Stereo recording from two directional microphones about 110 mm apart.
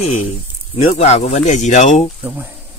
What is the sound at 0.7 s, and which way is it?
Speech, 85° left.